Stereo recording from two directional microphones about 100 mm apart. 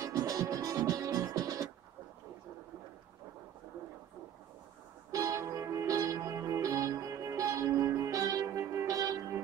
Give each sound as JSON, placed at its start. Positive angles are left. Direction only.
{"t": 0.0, "sound": "music", "side_deg": -35}
{"t": 5.1, "sound": "music", "side_deg": -30}